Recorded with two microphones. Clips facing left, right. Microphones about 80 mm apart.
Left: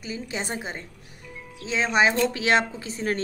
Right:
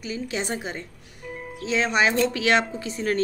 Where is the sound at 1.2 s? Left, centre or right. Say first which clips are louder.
Right 6 dB; right.